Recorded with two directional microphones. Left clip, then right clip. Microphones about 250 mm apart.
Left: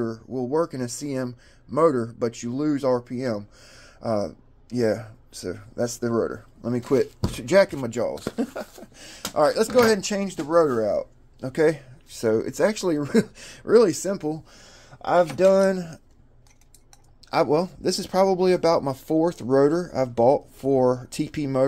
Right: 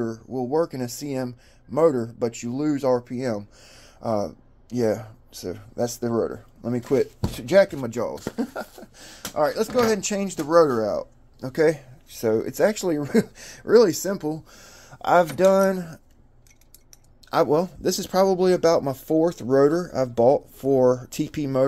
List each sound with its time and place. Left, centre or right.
0.0 s speech: centre
9.2 s speech: centre
10.2 s speech: centre
17.3 s speech: centre